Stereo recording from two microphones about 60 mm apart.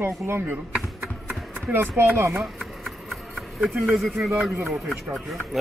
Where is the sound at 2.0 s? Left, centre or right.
Right.